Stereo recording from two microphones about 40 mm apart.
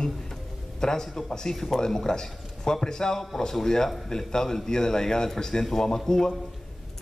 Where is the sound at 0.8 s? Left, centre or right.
Centre.